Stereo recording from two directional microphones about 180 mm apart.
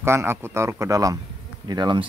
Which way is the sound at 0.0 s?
15° right (ahead or behind).